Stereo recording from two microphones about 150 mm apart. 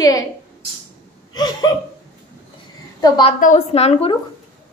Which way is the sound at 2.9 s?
25° left (ahead or behind).